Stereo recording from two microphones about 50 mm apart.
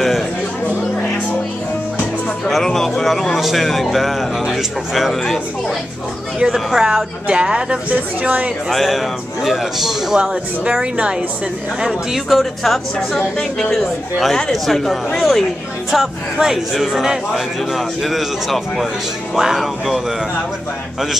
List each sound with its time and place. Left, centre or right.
2.5 s a man's voice: centre
6.5 s speech: centre
7.2 s speech: right
7.9 s speech: right
8.6 s a man's voice: centre
10.1 s speech: centre
11.8 s a man's voice: centre